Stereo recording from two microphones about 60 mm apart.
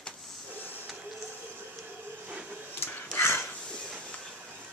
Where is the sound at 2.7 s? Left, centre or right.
Left.